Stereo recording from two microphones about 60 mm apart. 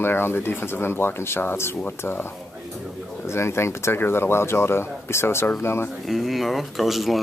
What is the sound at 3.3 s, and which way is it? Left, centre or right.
Speech, left.